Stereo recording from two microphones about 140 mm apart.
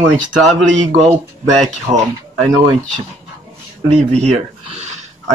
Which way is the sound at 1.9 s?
35° right (ahead or behind).